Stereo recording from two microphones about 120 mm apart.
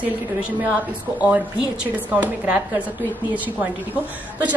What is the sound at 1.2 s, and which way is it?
A woman's voice, 10° right (ahead or behind).